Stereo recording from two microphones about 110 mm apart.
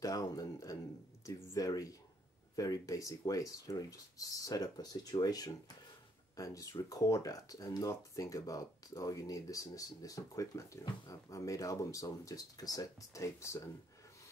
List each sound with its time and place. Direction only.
0.0 s speech: 30° left (ahead or behind)